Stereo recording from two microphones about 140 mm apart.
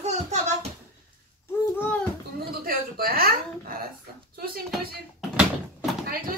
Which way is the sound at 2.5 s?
90° right.